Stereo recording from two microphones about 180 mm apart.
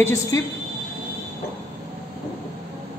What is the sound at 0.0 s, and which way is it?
Speech, 15° left (ahead or behind).